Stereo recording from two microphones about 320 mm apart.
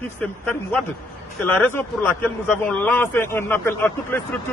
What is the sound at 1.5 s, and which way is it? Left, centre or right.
A man's voice, centre.